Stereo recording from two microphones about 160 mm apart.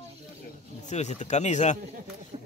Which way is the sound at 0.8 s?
45° left (ahead or behind).